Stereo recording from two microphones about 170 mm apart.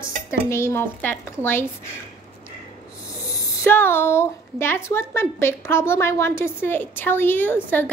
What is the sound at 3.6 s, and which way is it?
A woman's voice, 15° left (ahead or behind).